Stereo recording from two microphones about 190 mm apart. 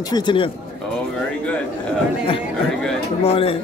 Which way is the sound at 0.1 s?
25° left (ahead or behind).